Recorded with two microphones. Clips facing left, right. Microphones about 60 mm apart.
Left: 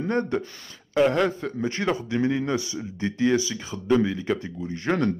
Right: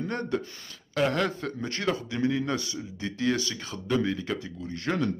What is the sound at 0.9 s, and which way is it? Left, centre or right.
A man's voice, centre.